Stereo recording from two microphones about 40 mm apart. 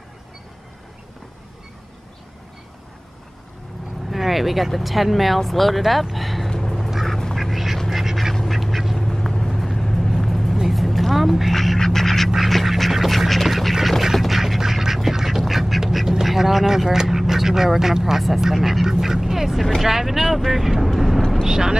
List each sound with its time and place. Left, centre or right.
4.1 s speech: centre
7.1 s quack: centre
7.3 s duck: centre
9.0 s vehicle: centre
9.5 s vehicle: centre
11.8 s duck: centre
19.8 s speech: centre
21.5 s vehicle: centre